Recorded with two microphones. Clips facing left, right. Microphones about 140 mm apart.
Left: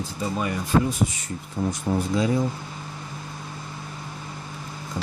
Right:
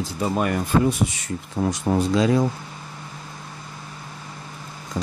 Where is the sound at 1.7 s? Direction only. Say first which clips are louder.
Right 4 dB; 90° right.